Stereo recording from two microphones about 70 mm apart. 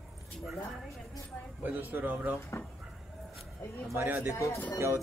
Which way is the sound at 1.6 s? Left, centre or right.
Right.